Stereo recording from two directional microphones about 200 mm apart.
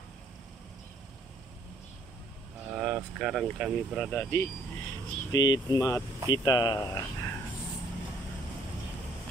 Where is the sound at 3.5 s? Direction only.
Centre (ahead or behind).